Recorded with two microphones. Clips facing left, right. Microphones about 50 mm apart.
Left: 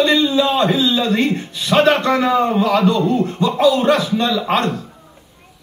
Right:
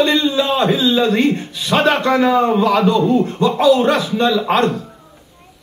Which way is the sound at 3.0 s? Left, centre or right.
Centre.